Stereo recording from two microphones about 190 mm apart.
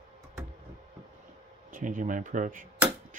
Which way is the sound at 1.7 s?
45° right (ahead or behind).